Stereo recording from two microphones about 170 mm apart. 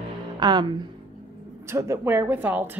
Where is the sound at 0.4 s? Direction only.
25° right (ahead or behind).